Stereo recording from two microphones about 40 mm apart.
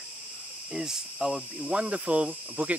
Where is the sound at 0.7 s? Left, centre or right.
Centre.